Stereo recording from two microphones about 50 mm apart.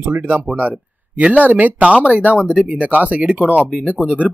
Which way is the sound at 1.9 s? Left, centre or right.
Right.